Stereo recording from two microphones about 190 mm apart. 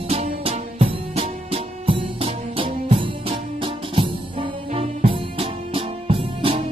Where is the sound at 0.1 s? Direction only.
30° right (ahead or behind).